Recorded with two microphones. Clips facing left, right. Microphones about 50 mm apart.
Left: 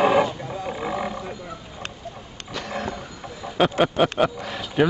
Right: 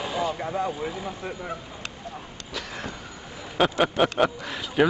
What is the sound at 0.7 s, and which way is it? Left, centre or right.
Roaring cats, left.